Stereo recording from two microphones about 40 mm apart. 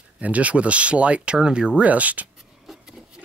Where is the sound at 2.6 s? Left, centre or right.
Centre.